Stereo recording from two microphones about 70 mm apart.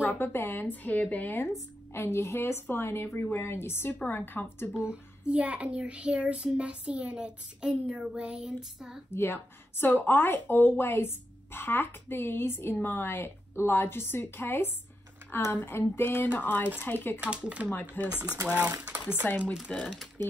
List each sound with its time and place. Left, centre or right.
0.0 s a woman's voice: left
2.0 s a woman's voice: left
4.7 s child singing: centre
9.1 s a woman's voice: left
17.2 s child singing: centre
17.6 s a woman's voice: left
18.4 s speech: right
19.2 s a woman's voice: left
19.7 s speech: centre